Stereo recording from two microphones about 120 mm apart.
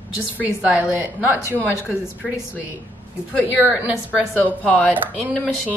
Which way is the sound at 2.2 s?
Centre (ahead or behind).